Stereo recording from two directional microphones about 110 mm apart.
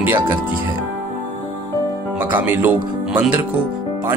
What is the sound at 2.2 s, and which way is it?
Speech, 15° right (ahead or behind).